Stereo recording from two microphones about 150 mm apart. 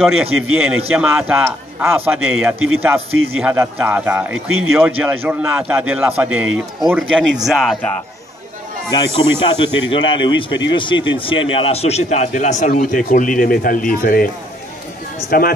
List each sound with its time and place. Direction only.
0.6 s a man's voice: 10° right (ahead or behind)
8.9 s a man's voice: 35° left (ahead or behind); by 15.5 s 75° left (ahead or behind)